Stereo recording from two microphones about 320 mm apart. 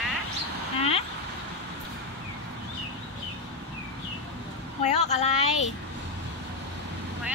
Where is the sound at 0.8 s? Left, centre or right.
Centre.